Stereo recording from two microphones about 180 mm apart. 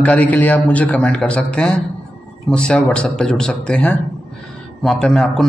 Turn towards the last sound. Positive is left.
turn(degrees=0)  # may be behind; listen again after turning